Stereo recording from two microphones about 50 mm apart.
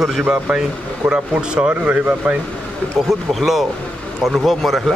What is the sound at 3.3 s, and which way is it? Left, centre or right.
Speech, centre.